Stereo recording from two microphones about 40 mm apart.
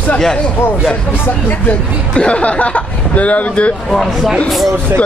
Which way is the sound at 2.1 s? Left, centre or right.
Left.